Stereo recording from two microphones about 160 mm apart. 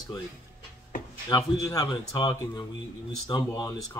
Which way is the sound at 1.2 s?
20° left (ahead or behind).